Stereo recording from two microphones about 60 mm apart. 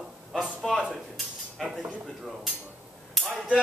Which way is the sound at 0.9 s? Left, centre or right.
Centre.